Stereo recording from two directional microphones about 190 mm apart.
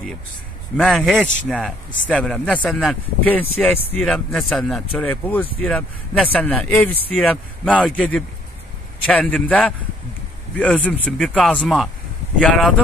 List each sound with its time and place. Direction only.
0.7 s speech: centre (ahead or behind)